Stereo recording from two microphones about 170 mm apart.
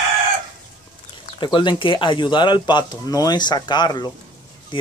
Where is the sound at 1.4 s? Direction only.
25° left (ahead or behind).